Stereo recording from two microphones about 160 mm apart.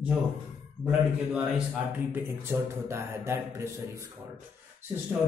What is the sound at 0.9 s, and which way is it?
Speech, 10° right (ahead or behind).